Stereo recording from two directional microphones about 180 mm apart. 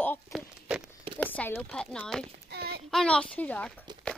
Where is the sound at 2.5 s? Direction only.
60° right (ahead or behind).